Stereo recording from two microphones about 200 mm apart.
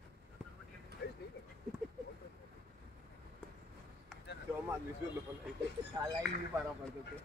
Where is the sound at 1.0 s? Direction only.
55° left (ahead or behind).